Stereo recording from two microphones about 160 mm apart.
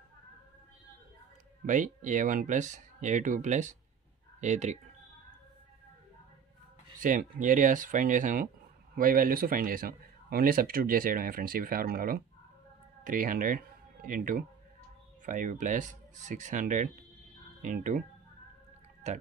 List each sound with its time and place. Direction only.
1.7 s speech: 55° right (ahead or behind)
7.0 s speech: 55° right (ahead or behind)